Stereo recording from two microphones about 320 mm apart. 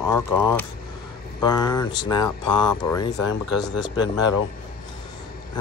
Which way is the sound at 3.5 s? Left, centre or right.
Left.